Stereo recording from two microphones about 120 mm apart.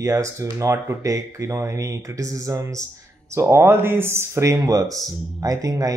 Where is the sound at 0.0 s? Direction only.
25° right (ahead or behind).